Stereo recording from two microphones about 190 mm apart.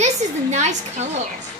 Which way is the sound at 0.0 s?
35° right (ahead or behind).